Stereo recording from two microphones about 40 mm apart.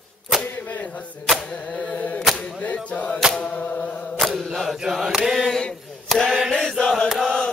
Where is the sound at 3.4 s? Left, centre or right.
Left.